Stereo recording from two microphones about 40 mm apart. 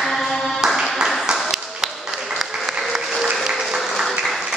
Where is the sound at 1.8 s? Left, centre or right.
Centre.